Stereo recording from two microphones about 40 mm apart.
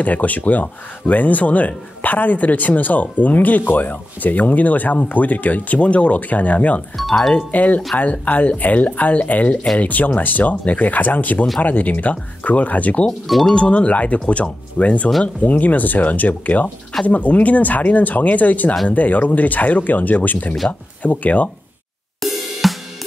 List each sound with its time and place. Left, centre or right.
0.0 s speech: left
7.0 s speech: centre
7.5 s speech: left
13.6 s speech: left
22.2 s cymbal: centre